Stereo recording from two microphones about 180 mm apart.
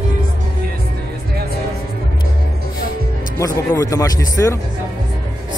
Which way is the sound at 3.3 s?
15° left (ahead or behind).